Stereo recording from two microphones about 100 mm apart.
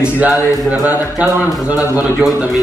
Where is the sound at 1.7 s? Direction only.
35° left (ahead or behind).